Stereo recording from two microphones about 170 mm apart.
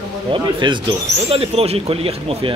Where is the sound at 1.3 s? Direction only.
35° right (ahead or behind).